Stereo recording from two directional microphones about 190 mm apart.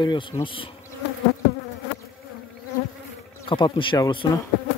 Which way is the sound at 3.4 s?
25° left (ahead or behind).